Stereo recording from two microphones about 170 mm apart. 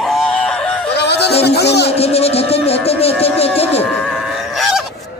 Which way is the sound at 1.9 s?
35° left (ahead or behind).